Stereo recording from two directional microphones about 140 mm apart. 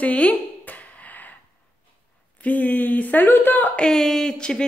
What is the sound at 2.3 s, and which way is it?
Speech, 10° left (ahead or behind).